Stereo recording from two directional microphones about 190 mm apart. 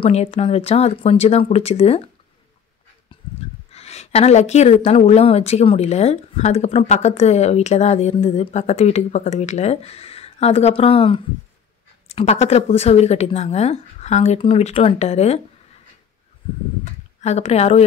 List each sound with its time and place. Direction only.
0.0 s a woman's voice: 30° left (ahead or behind)
3.7 s a woman's voice: 35° left (ahead or behind)
17.2 s a woman's voice: 35° left (ahead or behind)